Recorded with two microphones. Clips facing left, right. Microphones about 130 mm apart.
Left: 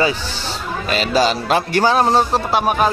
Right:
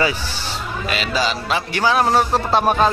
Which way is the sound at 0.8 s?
40° left (ahead or behind).